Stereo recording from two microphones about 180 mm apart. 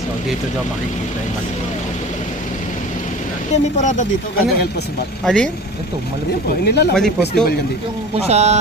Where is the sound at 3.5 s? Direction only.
40° left (ahead or behind).